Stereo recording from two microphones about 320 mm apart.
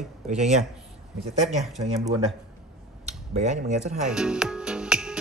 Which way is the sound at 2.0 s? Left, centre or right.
Centre.